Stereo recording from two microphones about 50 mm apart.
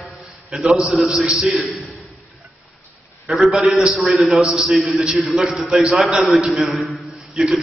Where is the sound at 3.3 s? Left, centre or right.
Centre.